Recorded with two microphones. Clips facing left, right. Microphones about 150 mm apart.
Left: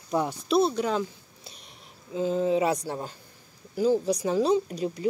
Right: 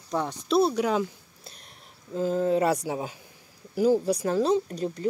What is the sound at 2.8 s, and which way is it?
Speech, 10° right (ahead or behind).